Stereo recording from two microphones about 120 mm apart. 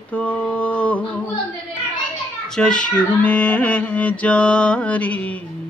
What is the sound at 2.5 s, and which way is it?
Speech, 5° left (ahead or behind).